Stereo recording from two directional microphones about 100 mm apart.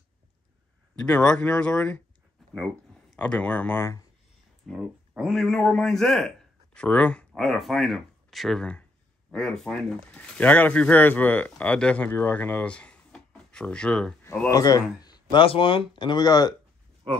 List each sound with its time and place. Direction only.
0.9 s speech: 10° left (ahead or behind)
3.2 s speech: 10° left (ahead or behind)
4.6 s a man's voice: centre (ahead or behind)
7.4 s speech: centre (ahead or behind)
14.5 s speech: 40° left (ahead or behind)
15.4 s speech: 65° left (ahead or behind); by 16.5 s 40° left (ahead or behind)